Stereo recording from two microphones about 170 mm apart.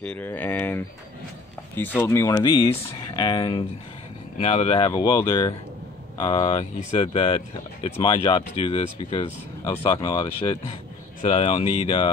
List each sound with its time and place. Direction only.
0.0 s speech: 10° left (ahead or behind)
2.0 s speech: 15° left (ahead or behind)
11.2 s speech: 35° left (ahead or behind)